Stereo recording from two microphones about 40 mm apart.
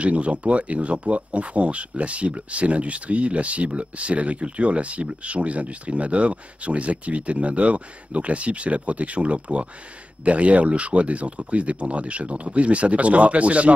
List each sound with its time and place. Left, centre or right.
0.0 s speech: right